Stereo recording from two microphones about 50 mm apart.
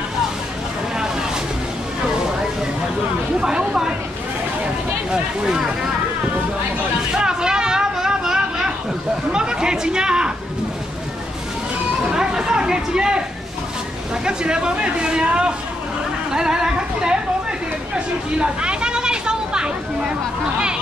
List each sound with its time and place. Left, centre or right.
3.3 s speech: centre
5.1 s speech: centre
7.2 s a sound: centre
9.3 s speech: centre
12.1 s speech: centre
14.2 s speech: centre
17.9 s a sound: centre